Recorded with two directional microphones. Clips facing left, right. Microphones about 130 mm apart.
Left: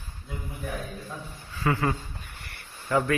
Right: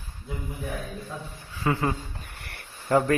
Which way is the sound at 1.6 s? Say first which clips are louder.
Even; 20° right (ahead or behind).